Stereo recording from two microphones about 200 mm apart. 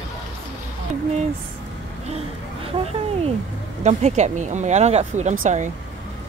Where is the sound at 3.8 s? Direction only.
35° right (ahead or behind).